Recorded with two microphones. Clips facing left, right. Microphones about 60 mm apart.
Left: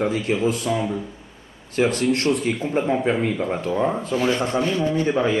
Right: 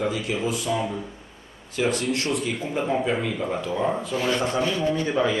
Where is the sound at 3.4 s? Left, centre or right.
Left.